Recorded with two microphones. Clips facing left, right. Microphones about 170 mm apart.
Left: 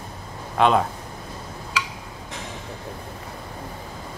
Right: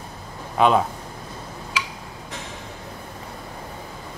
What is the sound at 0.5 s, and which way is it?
Speech, centre (ahead or behind).